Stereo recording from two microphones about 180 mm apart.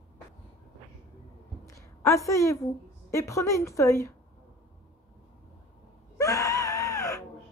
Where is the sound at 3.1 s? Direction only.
15° left (ahead or behind).